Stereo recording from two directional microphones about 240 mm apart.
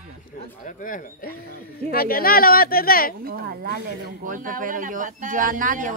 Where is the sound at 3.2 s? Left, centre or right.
Right.